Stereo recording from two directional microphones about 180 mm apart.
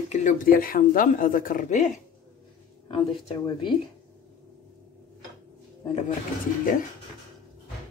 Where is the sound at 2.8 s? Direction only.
25° left (ahead or behind).